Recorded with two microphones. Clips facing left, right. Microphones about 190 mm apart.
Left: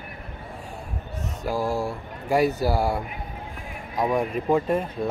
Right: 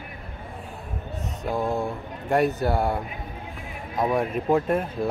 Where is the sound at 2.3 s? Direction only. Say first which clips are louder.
Left 1 dB; centre (ahead or behind).